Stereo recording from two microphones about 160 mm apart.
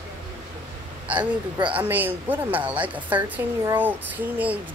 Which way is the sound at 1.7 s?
10° right (ahead or behind).